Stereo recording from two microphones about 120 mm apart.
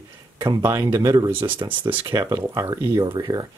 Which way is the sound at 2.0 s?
30° right (ahead or behind).